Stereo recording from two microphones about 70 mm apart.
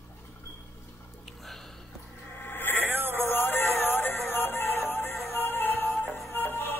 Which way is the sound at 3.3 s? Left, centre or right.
Left.